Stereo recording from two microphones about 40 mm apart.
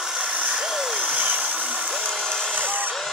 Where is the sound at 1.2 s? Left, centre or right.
Right.